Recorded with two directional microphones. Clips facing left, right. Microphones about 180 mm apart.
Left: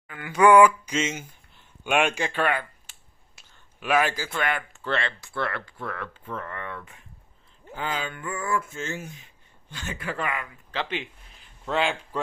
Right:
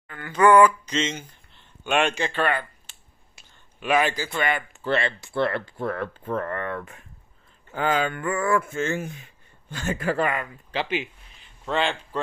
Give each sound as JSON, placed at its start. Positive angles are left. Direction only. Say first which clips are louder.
{"t": 0.0, "sound": "speech", "louder": "even", "side_deg": 10}
{"t": 4.8, "sound": "speech", "louder": "right 4 dB", "side_deg": -10}
{"t": 5.2, "sound": "speech", "louder": "right 6 dB", "side_deg": -25}
{"t": 9.7, "sound": "speech", "louder": "right 8 dB", "side_deg": -50}
{"t": 10.7, "sound": "speech", "louder": "right 3 dB", "side_deg": -10}
{"t": 11.6, "sound": "a man's voice", "louder": "right 1 dB", "side_deg": 5}